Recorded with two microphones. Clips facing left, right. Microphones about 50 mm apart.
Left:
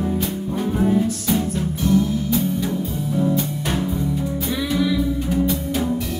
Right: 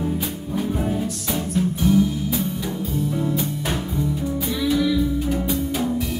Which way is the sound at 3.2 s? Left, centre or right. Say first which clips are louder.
Left 3 dB; centre.